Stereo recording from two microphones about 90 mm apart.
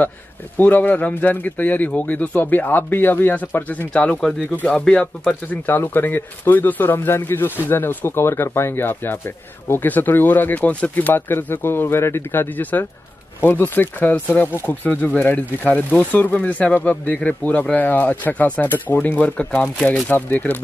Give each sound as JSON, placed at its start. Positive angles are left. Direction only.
{"t": 0.6, "sound": "speech", "side_deg": 20}
{"t": 5.5, "sound": "speech", "side_deg": 20}